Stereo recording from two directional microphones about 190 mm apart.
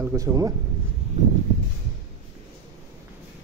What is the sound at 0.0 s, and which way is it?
Speech, 15° right (ahead or behind).